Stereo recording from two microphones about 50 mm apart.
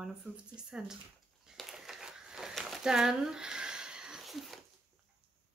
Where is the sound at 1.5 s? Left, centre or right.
Centre.